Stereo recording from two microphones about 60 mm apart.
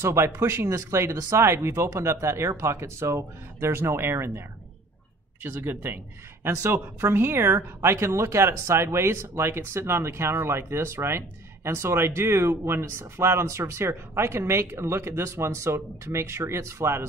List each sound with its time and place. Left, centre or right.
0.0 s speech: right